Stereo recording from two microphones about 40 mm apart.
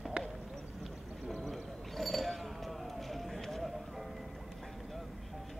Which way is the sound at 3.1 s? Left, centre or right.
Centre.